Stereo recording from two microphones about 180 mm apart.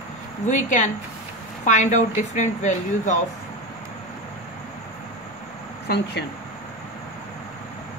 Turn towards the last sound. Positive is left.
turn(degrees=70)  # may be behind; listen again after turning